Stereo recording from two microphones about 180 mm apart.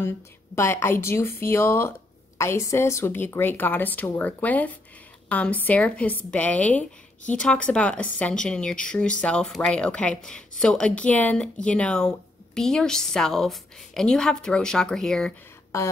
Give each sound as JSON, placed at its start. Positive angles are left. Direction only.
{"t": 0.6, "sound": "speech", "side_deg": 15}